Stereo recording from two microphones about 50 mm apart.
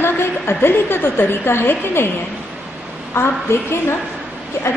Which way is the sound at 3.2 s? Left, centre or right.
Left.